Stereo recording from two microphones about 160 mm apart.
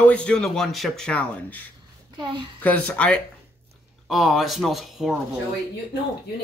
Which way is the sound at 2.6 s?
10° left (ahead or behind).